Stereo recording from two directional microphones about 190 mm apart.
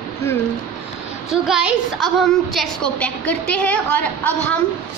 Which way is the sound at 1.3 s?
5° right (ahead or behind).